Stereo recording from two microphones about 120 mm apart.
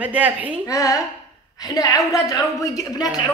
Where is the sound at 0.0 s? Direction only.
10° right (ahead or behind).